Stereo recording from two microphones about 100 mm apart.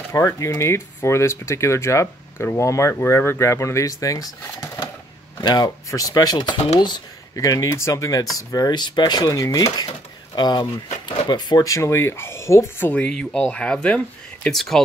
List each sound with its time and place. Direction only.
0.1 s speech: 30° left (ahead or behind)
5.4 s speech: 45° left (ahead or behind)
7.3 s speech: 35° left (ahead or behind)
13.0 s speech: 10° left (ahead or behind)